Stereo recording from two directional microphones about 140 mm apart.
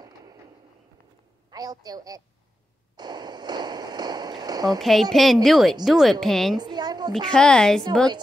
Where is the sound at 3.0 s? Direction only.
30° right (ahead or behind).